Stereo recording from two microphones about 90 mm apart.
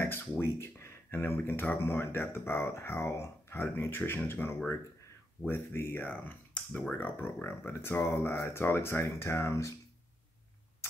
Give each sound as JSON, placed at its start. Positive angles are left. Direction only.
{"t": 0.0, "sound": "speech", "side_deg": 25}
{"t": 6.9, "sound": "speech", "side_deg": 25}